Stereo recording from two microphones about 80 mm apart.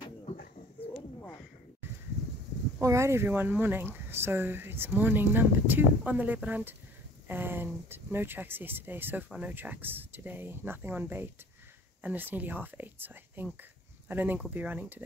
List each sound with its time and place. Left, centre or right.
2.8 s speech: right
3.3 s speech: right